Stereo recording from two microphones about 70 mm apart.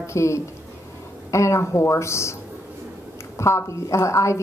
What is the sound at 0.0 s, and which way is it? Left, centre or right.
A woman's voice, left.